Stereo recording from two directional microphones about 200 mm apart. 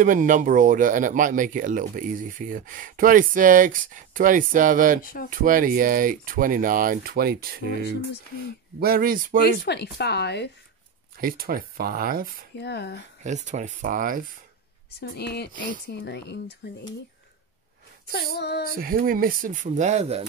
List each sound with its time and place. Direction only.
0.0 s speech: 40° right (ahead or behind)
5.0 s speech: 45° left (ahead or behind)
5.3 s speech: 45° right (ahead or behind)
9.7 s a woman's voice: 55° left (ahead or behind)
11.1 s speech: 50° right (ahead or behind)
12.5 s a woman's voice: 55° left (ahead or behind)
13.2 s speech: 35° right (ahead or behind)
15.0 s a woman's voice: 55° left (ahead or behind)
18.0 s a woman's voice: 55° left (ahead or behind)
18.7 s speech: 45° right (ahead or behind)